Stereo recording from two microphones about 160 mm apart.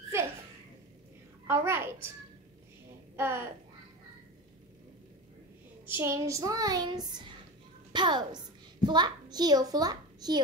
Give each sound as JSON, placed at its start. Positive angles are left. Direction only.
{"t": 1.5, "sound": "a child's voice", "side_deg": -15}
{"t": 3.2, "sound": "speech", "side_deg": -15}
{"t": 5.9, "sound": "a child's voice", "side_deg": -15}